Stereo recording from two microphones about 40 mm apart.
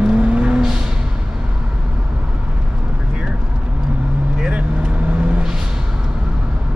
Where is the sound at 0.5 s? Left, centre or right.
Centre.